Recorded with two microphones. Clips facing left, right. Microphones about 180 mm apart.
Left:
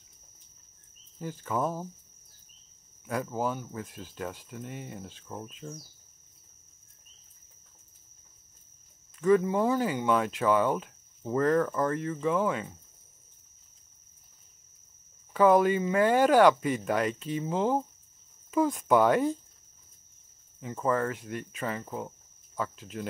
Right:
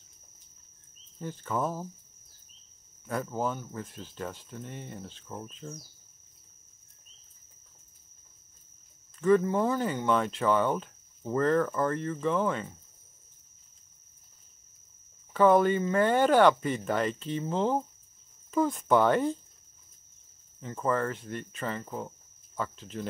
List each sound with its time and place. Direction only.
1.2 s speech: 5° left (ahead or behind)
3.1 s speech: centre (ahead or behind)
9.2 s speech: 5° left (ahead or behind)
15.3 s speech: 5° left (ahead or behind)
20.6 s speech: 5° left (ahead or behind)